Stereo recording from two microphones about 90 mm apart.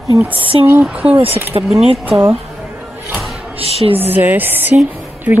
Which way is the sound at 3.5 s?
90° right.